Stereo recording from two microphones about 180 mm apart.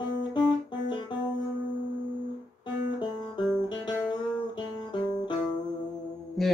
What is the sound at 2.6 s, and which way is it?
Music, 25° left (ahead or behind).